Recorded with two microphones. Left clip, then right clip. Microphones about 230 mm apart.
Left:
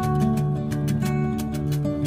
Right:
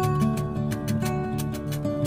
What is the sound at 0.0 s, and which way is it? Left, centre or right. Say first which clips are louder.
Music: left 1 dB; centre.